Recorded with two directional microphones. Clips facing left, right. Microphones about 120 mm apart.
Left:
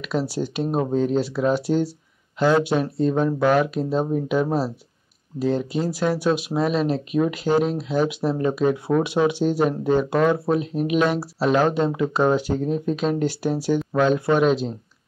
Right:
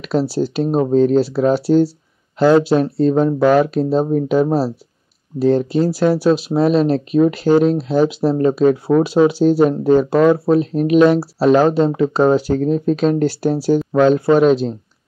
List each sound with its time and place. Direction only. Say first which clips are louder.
0.0 s speech: right 7 dB; 35° right (ahead or behind)